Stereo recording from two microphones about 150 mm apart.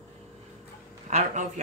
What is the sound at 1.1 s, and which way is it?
Speech, 50° right (ahead or behind).